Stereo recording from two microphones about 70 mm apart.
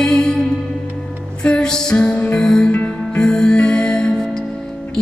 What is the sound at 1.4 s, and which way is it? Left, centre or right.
Music, centre.